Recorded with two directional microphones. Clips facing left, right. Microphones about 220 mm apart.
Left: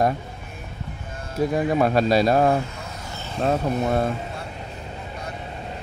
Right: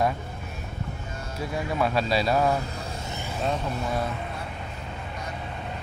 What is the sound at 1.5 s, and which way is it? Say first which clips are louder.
Speech: left 5 dB; 45° left (ahead or behind).